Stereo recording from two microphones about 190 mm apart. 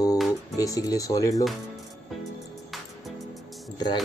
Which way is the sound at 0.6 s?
20° left (ahead or behind).